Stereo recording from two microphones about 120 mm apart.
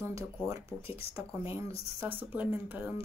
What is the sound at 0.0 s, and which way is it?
Speech, 25° right (ahead or behind).